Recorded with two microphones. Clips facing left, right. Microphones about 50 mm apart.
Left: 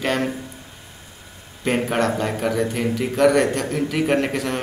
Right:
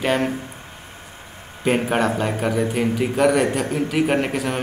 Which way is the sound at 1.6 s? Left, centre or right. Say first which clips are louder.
Right 1 dB; centre.